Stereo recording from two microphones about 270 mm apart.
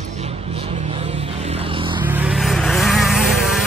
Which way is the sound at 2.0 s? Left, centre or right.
Centre.